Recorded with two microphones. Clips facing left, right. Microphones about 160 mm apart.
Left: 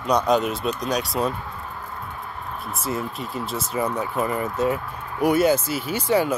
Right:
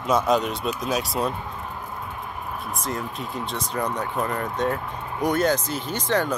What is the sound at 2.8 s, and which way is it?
Speech, 5° left (ahead or behind).